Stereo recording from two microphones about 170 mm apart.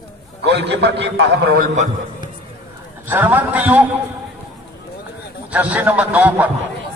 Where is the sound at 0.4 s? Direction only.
80° right.